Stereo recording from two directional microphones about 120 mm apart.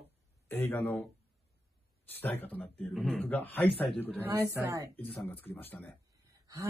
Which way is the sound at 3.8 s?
15° left (ahead or behind).